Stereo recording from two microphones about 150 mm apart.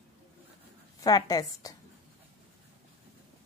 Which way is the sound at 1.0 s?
25° left (ahead or behind).